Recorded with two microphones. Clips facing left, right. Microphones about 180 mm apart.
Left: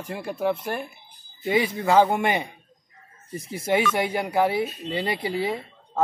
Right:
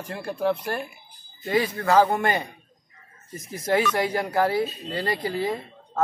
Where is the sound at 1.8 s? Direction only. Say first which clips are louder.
Left 1 dB; 25° left (ahead or behind).